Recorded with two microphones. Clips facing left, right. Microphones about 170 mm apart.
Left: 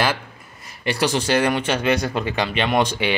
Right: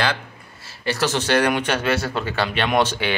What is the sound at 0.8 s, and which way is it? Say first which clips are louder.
Speech: left 1 dB; 10° left (ahead or behind).